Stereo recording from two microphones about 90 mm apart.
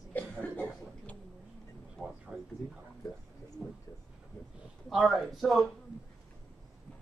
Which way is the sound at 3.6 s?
15° right (ahead or behind).